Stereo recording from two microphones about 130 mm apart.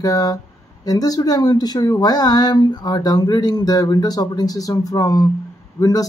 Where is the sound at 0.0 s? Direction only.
30° left (ahead or behind).